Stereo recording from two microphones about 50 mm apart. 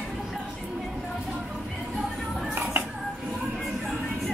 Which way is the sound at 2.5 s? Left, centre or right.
Right.